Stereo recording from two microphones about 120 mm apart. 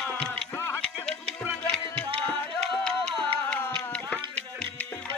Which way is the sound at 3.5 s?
10° left (ahead or behind).